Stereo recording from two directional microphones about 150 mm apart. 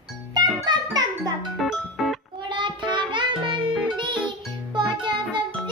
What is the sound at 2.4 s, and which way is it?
Child singing, 30° right (ahead or behind).